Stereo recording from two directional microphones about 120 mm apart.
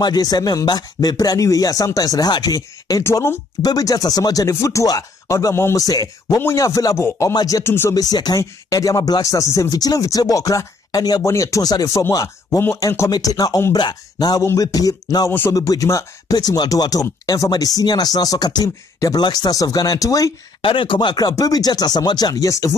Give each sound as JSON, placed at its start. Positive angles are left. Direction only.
{"t": 0.0, "sound": "speech", "side_deg": 35}
{"t": 20.6, "sound": "speech", "side_deg": 45}